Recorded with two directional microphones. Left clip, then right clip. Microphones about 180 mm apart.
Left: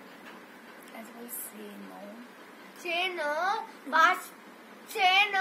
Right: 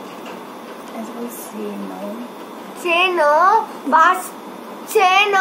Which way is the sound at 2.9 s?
30° right (ahead or behind).